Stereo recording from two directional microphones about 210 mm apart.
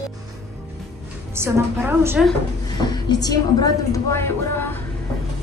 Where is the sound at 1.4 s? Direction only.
10° right (ahead or behind).